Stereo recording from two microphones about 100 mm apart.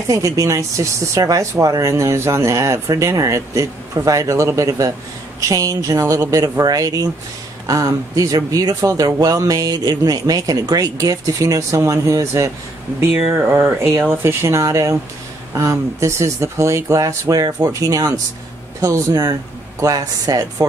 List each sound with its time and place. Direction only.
0.1 s speech: 35° right (ahead or behind)